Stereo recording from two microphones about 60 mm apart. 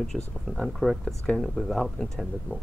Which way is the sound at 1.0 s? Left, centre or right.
Centre.